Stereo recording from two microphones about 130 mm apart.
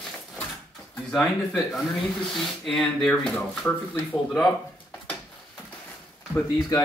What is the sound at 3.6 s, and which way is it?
Speech, 20° left (ahead or behind).